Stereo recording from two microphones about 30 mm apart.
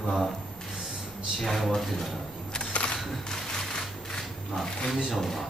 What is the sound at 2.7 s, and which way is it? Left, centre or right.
Single-lens reflex camera, left.